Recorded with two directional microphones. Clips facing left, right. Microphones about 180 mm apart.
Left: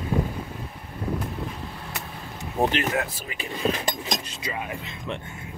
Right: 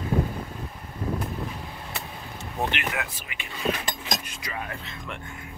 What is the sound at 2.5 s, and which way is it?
Speech, 35° left (ahead or behind).